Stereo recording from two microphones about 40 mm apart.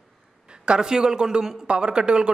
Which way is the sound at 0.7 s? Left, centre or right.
Centre.